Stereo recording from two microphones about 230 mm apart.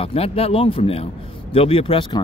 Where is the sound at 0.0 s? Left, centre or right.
Left.